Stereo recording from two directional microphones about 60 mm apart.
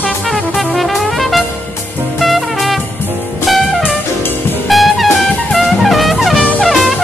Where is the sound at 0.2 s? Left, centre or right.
Centre.